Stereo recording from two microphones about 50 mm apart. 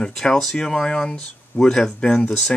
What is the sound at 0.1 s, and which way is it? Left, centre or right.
Speech, centre.